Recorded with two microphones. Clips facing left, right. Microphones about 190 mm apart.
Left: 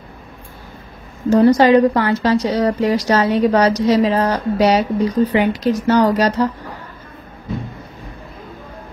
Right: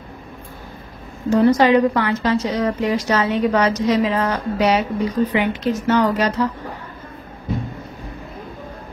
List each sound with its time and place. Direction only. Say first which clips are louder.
1.3 s a woman's voice: left 3 dB; 40° left (ahead or behind)